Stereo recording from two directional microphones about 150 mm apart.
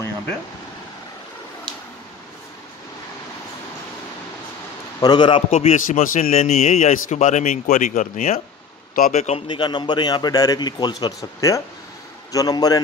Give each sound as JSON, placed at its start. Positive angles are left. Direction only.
{"t": 5.0, "sound": "speech", "side_deg": 30}
{"t": 5.8, "sound": "a man's voice", "side_deg": 60}
{"t": 9.1, "sound": "a man's voice", "side_deg": 45}
{"t": 9.5, "sound": "a man's voice", "side_deg": 30}